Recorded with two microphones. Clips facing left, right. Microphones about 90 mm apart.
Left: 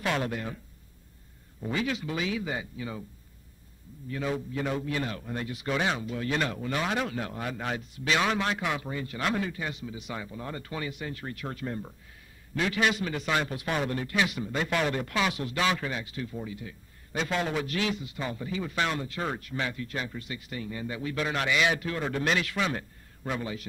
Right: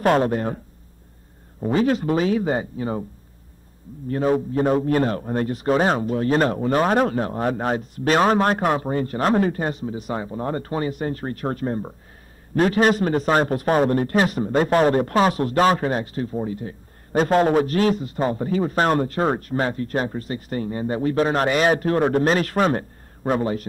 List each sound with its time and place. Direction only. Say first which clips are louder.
0.0 s a man's voice: right 11 dB; 45° right (ahead or behind)
1.6 s a man's voice: right 11 dB; 40° right (ahead or behind)
4.1 s a man's voice: right 11 dB; 45° right (ahead or behind)